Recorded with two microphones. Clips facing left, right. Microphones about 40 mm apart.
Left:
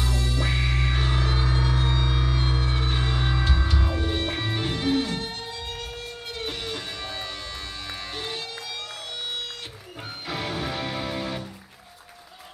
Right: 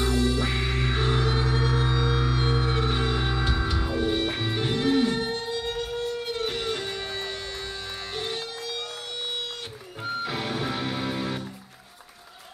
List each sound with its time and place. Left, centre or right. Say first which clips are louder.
0.0 s music: right 4 dB; centre
10.0 s music: right 3 dB; centre